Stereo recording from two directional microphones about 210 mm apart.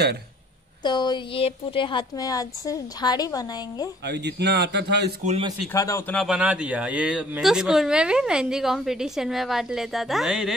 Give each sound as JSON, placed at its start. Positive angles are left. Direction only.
{"t": 0.8, "sound": "a woman's voice", "side_deg": 20}
{"t": 4.0, "sound": "a man's voice", "side_deg": -50}
{"t": 5.2, "sound": "a man's voice", "side_deg": -30}
{"t": 5.7, "sound": "speech", "side_deg": 15}
{"t": 6.2, "sound": "speech", "side_deg": -5}